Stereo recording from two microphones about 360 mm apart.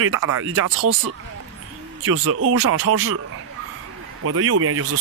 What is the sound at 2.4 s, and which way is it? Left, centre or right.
Speech, right.